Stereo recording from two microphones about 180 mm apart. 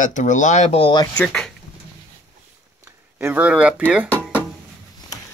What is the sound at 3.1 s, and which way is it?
Speech, 10° right (ahead or behind).